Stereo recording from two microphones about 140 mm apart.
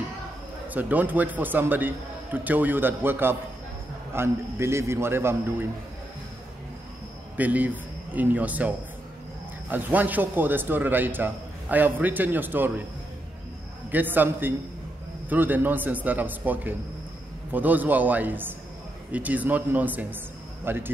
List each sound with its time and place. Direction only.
0.7 s a man's voice: 10° right (ahead or behind)
7.3 s a man's voice: 10° right (ahead or behind)
13.9 s a man's voice: 15° right (ahead or behind)